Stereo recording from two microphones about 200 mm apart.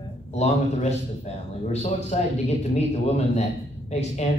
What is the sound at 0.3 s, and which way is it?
A man's voice, 35° left (ahead or behind).